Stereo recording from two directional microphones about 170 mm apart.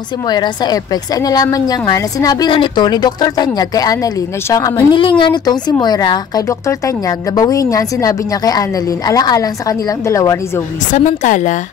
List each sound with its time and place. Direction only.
0.3 s a woman's voice: 25° left (ahead or behind)
10.9 s a woman's voice: 45° left (ahead or behind)